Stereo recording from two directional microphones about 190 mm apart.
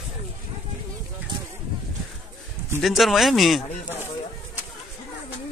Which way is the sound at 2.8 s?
Centre (ahead or behind).